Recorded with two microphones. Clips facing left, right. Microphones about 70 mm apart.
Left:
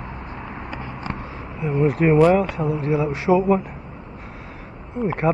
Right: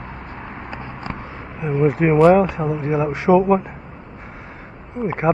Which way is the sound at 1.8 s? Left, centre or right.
Centre.